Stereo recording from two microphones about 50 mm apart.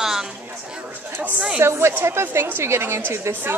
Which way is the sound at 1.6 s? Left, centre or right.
Right.